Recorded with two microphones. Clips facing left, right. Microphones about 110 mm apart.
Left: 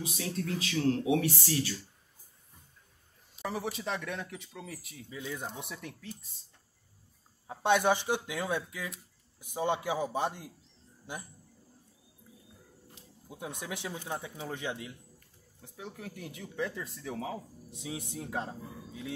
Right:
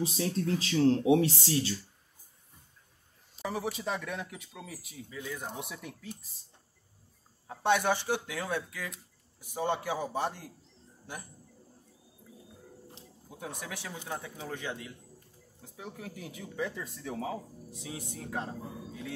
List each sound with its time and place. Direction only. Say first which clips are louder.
0.0 s speech: right 5 dB; 35° right (ahead or behind)
3.7 s speech: right 1 dB; centre (ahead or behind)
5.1 s speech: left 1 dB; 15° left (ahead or behind)
5.6 s speech: right 1 dB; centre (ahead or behind)
7.4 s speech: left 1 dB; 15° left (ahead or behind)
13.3 s speech: left 1 dB; 15° left (ahead or behind)
15.6 s speech: even; centre (ahead or behind)
17.6 s speech: left 5 dB; 20° left (ahead or behind)